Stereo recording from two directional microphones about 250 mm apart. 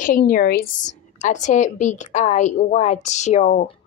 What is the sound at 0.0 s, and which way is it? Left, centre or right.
A woman's voice, left.